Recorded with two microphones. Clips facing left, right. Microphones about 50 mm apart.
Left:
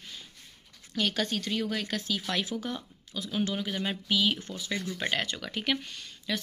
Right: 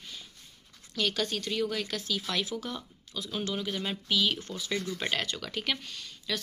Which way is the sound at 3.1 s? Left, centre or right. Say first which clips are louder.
Left 2 dB; centre.